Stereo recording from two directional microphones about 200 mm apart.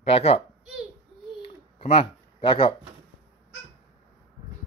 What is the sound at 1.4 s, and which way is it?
Pigeon, 30° left (ahead or behind).